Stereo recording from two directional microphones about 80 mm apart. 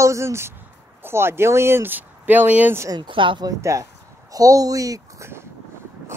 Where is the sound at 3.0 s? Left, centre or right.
Right.